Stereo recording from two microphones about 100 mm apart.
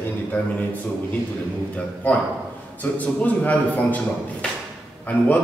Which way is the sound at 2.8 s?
15° left (ahead or behind).